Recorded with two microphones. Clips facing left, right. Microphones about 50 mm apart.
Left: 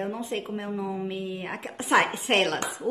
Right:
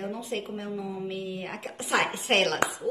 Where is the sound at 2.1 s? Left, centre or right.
Centre.